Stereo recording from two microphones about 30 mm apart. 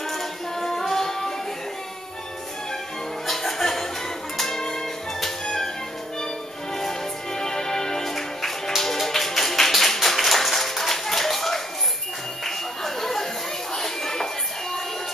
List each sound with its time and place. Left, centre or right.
0.6 s music: centre
3.3 s music: centre
6.8 s music: centre
12.4 s a sound: centre